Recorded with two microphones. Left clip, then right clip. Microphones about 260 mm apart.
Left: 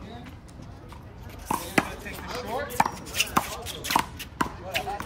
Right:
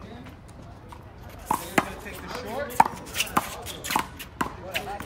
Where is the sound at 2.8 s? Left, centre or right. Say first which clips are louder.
Right 4 dB; centre.